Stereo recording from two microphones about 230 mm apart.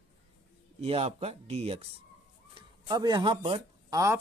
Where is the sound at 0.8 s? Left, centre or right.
Right.